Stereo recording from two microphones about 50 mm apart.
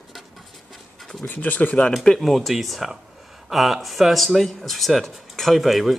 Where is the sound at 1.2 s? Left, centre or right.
Left.